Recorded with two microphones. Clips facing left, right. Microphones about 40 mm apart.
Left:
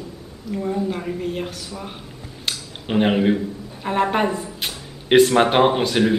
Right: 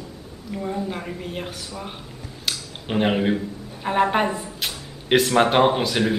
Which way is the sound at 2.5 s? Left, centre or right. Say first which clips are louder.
Left 2 dB; centre.